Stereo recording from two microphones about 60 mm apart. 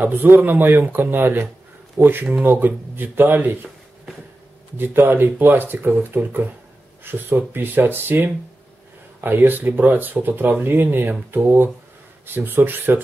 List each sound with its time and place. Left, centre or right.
0.0 s speech: right
4.7 s speech: right